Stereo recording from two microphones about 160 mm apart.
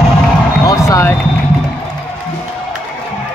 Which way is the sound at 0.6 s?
20° left (ahead or behind).